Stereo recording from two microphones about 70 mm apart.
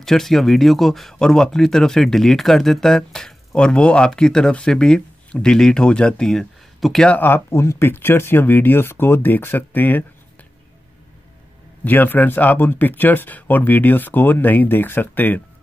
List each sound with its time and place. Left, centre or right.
0.0 s speech: centre
7.1 s speech: left
11.8 s speech: left